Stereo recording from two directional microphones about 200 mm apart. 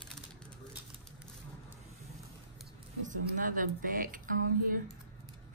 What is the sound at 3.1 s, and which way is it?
Speech, 40° right (ahead or behind).